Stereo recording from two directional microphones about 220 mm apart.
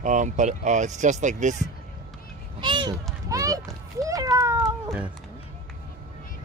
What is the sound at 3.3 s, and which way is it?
A child's voice, 15° right (ahead or behind).